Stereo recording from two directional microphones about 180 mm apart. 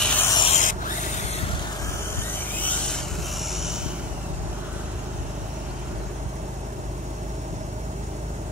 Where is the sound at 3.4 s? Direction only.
Centre (ahead or behind).